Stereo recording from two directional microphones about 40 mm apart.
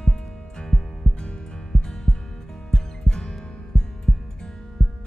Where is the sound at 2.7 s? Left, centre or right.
Centre.